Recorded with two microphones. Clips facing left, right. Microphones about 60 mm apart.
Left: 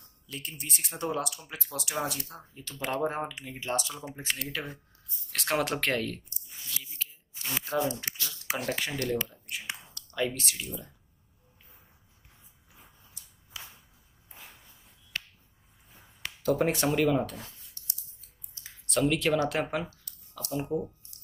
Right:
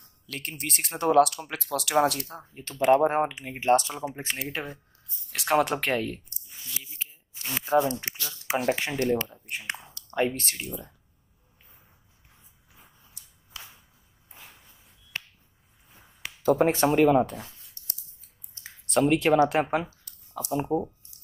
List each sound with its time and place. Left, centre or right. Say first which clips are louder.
0.3 s speech: right 5 dB; right
2.9 s speech: right 10 dB; right
4.5 s speech: right 3 dB; right
5.3 s speech: right 5 dB; centre
6.8 s speech: right 2 dB; right
7.6 s speech: right 7 dB; right
9.2 s speech: right 3 dB; right
10.6 s speech: right 3 dB; right
13.5 s whip: right 1 dB; centre
16.4 s speech: right 5 dB; right
18.9 s speech: right 5 dB; right